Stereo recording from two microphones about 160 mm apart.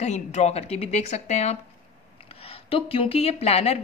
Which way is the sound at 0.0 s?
45° left (ahead or behind).